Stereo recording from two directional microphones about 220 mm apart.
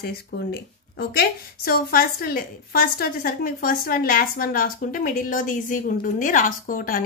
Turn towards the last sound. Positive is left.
turn(degrees=40)  # may be behind; listen again after turning